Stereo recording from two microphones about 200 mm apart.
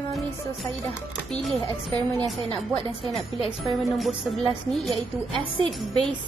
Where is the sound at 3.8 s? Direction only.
Centre (ahead or behind).